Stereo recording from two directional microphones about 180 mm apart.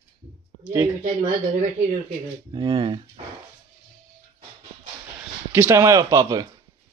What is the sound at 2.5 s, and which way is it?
Speech, 25° right (ahead or behind).